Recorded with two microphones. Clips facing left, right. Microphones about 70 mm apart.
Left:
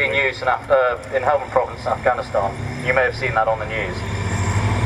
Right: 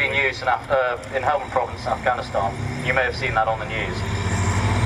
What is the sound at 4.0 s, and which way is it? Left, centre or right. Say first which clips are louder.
Vehicle: even; centre.